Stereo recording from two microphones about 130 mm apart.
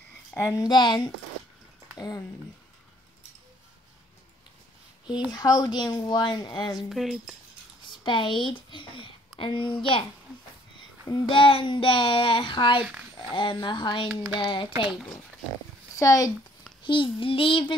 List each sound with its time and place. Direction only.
0.4 s a woman's voice: 20° left (ahead or behind)
0.7 s a woman's voice: 35° left (ahead or behind)
5.3 s a woman's voice: 30° left (ahead or behind)
6.9 s cutlery: centre (ahead or behind)
8.0 s a woman's voice: 40° left (ahead or behind)
11.2 s a woman's voice: 45° left (ahead or behind)
16.0 s a woman's voice: 25° left (ahead or behind)
16.8 s a woman's voice: 40° left (ahead or behind)